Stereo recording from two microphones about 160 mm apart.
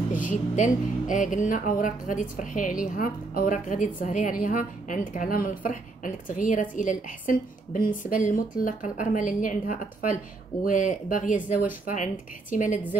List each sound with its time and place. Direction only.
0.1 s speech: 55° left (ahead or behind)